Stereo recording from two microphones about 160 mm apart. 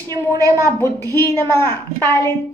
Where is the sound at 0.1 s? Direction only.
20° right (ahead or behind).